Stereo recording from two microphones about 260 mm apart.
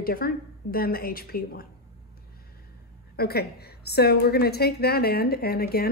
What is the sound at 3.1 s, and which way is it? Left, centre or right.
A woman's voice, left.